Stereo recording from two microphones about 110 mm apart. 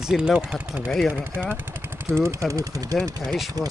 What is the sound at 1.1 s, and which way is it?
Speech, 15° right (ahead or behind).